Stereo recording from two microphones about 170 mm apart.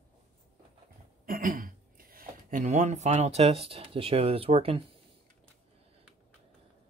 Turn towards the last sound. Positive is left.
turn(degrees=-35)  # may be behind; listen again after turning